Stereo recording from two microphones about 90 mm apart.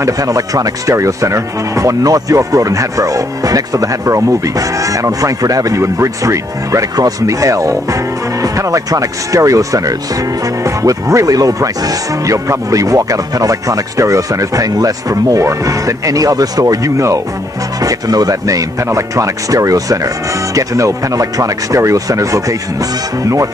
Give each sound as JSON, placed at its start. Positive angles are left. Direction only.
{"t": 0.0, "sound": "speech", "side_deg": -40}